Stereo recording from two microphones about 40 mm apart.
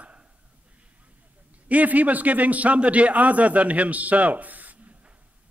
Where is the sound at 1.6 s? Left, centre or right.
Right.